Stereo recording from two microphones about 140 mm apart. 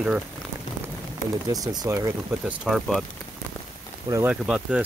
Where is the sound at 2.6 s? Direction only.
Centre (ahead or behind).